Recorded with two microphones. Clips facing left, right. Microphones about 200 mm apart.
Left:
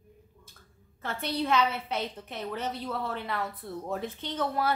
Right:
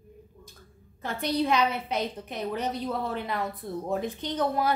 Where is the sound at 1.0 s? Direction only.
15° right (ahead or behind).